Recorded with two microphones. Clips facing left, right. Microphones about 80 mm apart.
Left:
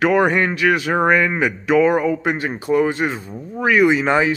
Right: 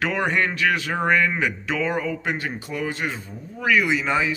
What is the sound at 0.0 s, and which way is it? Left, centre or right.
A man's voice, left.